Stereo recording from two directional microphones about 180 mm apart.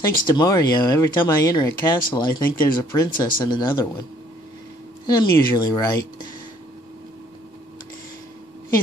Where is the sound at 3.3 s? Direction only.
25° left (ahead or behind).